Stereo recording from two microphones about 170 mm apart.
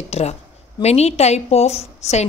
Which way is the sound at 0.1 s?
40° left (ahead or behind).